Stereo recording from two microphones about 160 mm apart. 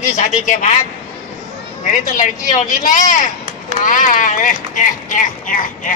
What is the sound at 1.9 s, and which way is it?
Speech, 55° left (ahead or behind).